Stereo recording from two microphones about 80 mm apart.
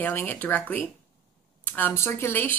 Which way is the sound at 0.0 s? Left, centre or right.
Left.